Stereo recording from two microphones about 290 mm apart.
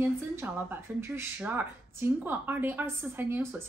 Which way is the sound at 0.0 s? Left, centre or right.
Centre.